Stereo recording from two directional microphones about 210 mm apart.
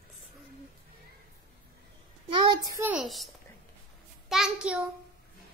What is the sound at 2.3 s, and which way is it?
Child singing, 20° right (ahead or behind).